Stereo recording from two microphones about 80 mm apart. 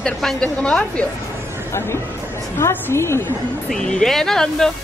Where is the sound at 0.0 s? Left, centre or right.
Centre.